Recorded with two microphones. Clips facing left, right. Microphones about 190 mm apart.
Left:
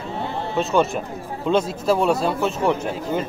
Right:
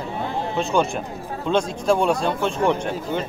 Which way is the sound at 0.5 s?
Centre (ahead or behind).